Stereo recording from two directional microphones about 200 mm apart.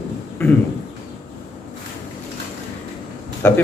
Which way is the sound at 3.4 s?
10° left (ahead or behind).